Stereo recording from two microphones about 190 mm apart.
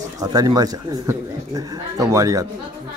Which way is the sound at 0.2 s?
20° right (ahead or behind).